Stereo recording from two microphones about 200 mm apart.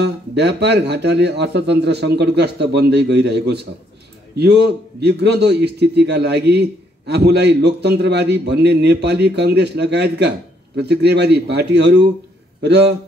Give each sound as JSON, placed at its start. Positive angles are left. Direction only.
{"t": 0.0, "sound": "a man's voice", "side_deg": -60}